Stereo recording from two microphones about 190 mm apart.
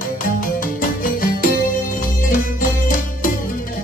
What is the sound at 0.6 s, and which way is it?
Music, 45° left (ahead or behind).